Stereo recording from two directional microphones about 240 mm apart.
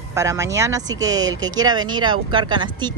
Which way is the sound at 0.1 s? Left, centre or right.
Centre.